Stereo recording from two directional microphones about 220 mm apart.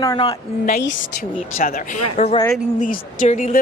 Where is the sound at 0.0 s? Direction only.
20° left (ahead or behind).